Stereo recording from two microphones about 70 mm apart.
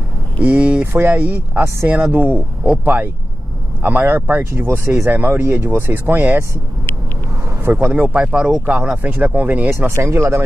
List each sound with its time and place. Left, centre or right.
0.4 s speech: centre
0.9 s speech: right
7.6 s speech: right; by 8.6 s centre
8.6 s speech: right
9.7 s speech: right